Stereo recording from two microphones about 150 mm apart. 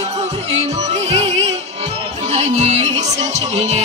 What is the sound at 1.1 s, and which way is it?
Music, 45° right (ahead or behind).